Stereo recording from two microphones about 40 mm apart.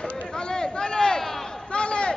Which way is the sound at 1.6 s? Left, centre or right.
Left.